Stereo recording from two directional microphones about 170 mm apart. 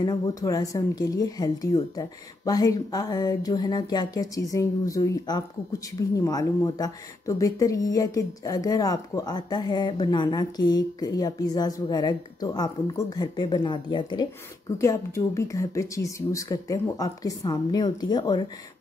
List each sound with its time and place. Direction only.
0.0 s speech: 20° left (ahead or behind)